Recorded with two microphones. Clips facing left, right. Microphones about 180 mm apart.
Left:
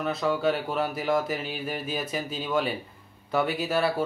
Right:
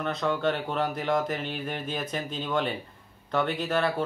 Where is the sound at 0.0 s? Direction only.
5° left (ahead or behind).